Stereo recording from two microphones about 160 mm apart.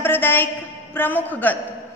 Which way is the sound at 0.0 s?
15° left (ahead or behind).